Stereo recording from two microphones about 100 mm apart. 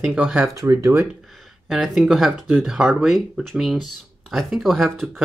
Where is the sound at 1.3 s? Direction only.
Centre (ahead or behind).